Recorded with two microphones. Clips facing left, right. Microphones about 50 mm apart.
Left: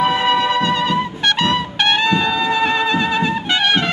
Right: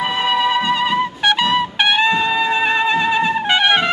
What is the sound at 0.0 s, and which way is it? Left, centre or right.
Trumpet, centre.